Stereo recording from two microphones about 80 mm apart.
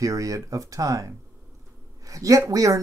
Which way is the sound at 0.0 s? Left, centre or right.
Right.